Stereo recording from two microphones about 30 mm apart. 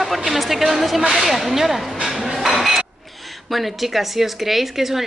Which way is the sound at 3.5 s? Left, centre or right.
Centre.